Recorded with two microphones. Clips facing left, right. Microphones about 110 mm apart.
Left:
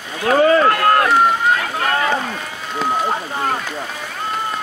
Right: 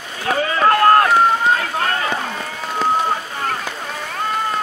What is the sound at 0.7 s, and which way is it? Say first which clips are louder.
Run: right 2 dB; 35° right (ahead or behind).